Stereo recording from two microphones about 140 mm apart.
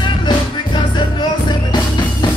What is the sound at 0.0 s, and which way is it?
Music, 35° left (ahead or behind).